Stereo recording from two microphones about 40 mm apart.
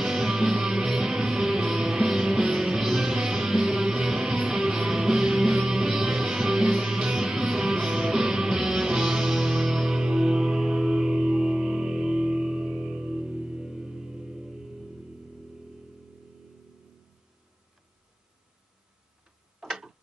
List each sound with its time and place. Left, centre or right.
0.0 s music: centre
19.6 s tick-tock: centre